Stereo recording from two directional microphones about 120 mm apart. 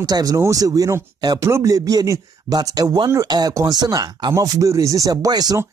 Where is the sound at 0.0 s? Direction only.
35° right (ahead or behind).